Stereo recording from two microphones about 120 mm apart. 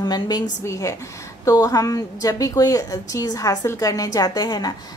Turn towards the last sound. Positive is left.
turn(degrees=35)  # may be behind; listen again after turning